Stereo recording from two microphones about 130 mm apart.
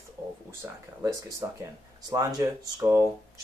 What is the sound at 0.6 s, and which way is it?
Speech, 20° right (ahead or behind).